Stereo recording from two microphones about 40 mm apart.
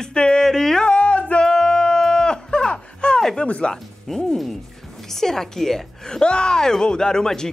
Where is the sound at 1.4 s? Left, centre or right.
Centre.